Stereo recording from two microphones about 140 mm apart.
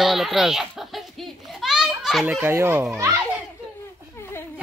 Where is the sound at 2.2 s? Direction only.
15° right (ahead or behind).